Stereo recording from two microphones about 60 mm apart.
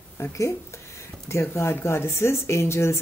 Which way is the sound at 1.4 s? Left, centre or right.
Left.